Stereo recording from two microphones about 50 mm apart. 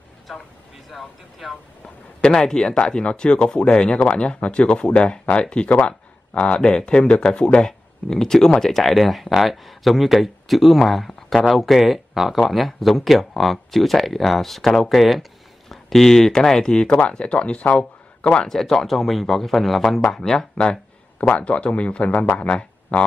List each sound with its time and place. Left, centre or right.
0.9 s speech: centre
2.2 s speech: centre
18.5 s speech: centre